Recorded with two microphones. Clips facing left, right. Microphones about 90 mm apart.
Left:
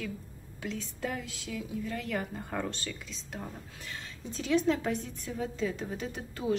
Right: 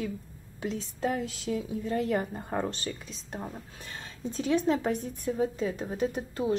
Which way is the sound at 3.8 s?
40° right (ahead or behind).